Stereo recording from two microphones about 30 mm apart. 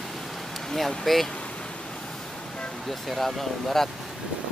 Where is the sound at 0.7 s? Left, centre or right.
Centre.